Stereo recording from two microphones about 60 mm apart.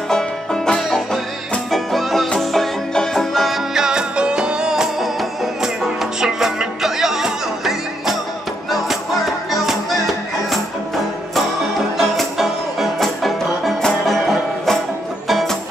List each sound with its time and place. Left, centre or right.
0.1 s music: centre
12.0 s music: centre